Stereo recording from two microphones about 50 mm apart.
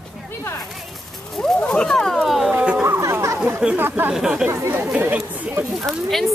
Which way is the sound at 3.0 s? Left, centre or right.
Right.